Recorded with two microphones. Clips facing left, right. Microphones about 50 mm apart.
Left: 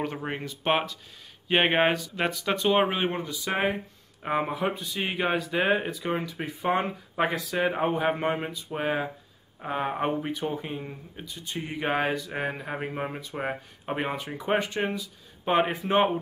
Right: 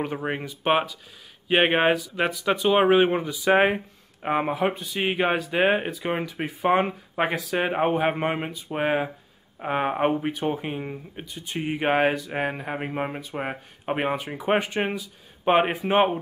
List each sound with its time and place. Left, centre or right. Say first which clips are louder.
0.0 s speech: right 3 dB; centre
2.9 s speech: right 9 dB; centre
7.5 s speech: right 4 dB; right
8.1 s speech: right 1 dB; centre